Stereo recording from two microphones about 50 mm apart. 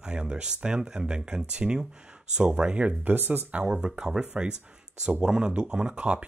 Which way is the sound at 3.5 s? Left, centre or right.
Right.